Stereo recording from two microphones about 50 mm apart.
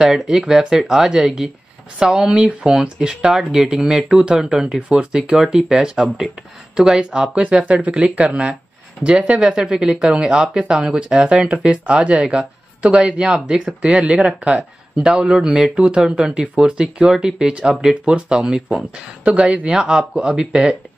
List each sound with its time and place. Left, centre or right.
0.0 s speech: centre